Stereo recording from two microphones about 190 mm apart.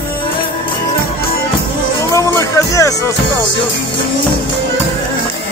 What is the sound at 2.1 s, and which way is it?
Music, 15° left (ahead or behind).